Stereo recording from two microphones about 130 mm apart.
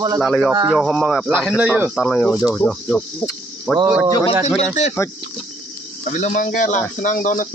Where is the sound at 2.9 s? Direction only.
15° left (ahead or behind).